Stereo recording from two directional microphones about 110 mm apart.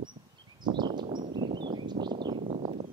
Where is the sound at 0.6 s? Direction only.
45° right (ahead or behind).